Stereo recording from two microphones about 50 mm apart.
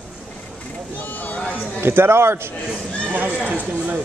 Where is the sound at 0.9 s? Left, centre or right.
Left.